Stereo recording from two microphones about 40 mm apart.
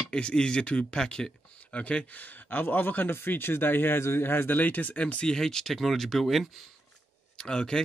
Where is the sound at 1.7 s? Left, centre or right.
Left.